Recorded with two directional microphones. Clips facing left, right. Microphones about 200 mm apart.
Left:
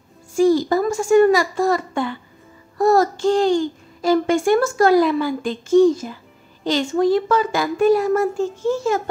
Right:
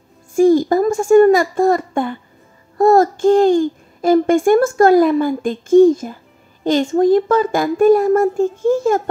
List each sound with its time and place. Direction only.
0.3 s a child's voice: 50° right (ahead or behind)